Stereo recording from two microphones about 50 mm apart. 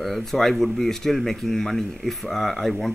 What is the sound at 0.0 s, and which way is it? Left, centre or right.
Speech, centre.